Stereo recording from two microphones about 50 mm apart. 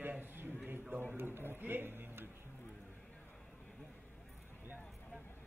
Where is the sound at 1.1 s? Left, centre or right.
Right.